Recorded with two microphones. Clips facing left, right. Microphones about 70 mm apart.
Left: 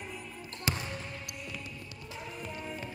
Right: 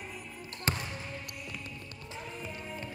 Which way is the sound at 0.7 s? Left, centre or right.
Right.